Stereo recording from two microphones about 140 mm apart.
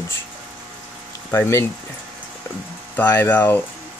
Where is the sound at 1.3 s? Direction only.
20° left (ahead or behind).